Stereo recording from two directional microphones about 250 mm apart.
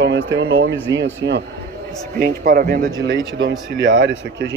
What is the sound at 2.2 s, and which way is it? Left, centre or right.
Speech, right.